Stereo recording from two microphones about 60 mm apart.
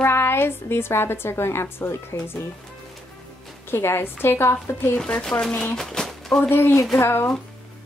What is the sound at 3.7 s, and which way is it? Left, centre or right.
Speech, left.